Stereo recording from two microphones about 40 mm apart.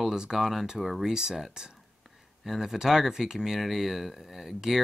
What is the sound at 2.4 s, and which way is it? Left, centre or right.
Speech, centre.